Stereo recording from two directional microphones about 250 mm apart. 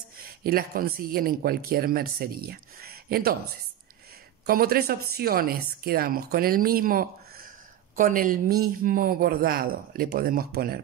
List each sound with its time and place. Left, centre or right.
0.4 s speech: right
4.5 s speech: right